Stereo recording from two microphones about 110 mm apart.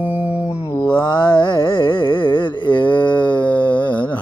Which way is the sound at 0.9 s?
50° left (ahead or behind).